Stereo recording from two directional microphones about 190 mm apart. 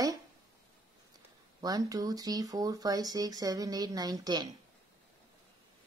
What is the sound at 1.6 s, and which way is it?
Speech, 20° right (ahead or behind).